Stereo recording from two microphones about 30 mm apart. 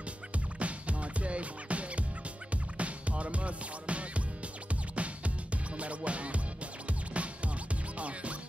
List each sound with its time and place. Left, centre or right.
0.6 s music: right